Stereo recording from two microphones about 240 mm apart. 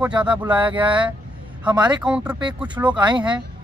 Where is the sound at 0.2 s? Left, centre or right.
Centre.